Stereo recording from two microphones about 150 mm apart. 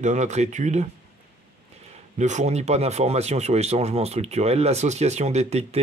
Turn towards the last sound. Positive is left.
turn(degrees=-45)  # may be behind; listen again after turning